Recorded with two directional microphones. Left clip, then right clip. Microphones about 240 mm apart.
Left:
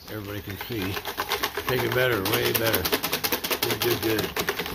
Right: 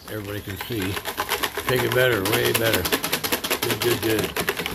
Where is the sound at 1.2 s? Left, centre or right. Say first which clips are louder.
Right 2 dB; centre.